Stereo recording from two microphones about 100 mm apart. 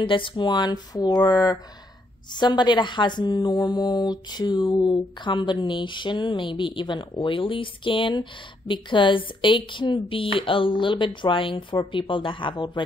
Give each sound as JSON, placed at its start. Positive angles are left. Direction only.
{"t": 0.0, "sound": "speech", "side_deg": 60}